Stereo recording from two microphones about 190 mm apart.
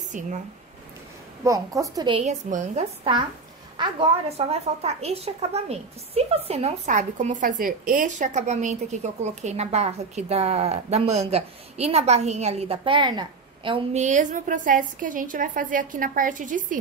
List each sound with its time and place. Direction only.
1.4 s a woman's voice: 15° right (ahead or behind)
2.1 s a woman's voice: 35° right (ahead or behind)
14.0 s a woman's voice: 40° right (ahead or behind)